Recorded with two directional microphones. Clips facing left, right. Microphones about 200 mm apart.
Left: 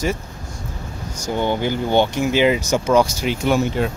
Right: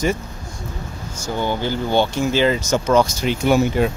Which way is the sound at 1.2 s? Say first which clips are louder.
Left 2 dB; 20° left (ahead or behind).